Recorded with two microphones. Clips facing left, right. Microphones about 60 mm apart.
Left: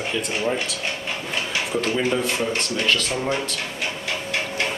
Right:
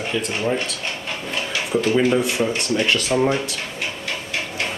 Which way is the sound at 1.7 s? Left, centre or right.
Centre.